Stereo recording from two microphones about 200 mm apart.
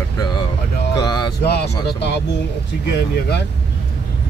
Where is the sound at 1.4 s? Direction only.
55° left (ahead or behind).